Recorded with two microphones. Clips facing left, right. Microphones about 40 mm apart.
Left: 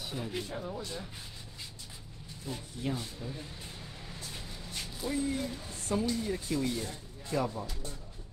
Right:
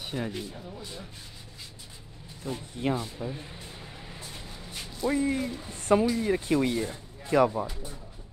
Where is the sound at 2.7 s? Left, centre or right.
Right.